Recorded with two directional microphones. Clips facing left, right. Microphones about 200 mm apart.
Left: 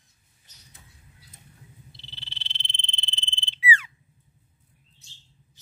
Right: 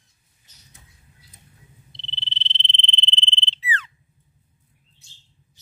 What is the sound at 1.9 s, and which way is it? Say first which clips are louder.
Frog: right 6 dB; 5° left (ahead or behind).